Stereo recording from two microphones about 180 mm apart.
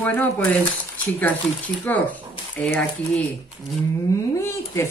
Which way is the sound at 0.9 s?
10° left (ahead or behind).